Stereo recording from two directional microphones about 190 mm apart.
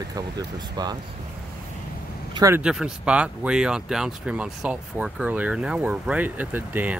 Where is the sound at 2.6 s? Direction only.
5° right (ahead or behind).